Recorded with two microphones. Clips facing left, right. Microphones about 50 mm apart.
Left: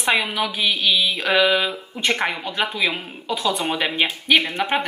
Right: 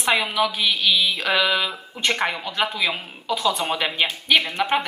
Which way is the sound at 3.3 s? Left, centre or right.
Centre.